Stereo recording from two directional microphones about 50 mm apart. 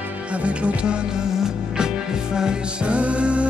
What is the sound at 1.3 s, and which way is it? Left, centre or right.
Music, centre.